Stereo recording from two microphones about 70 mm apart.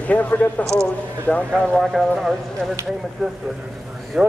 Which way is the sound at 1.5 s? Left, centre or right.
Centre.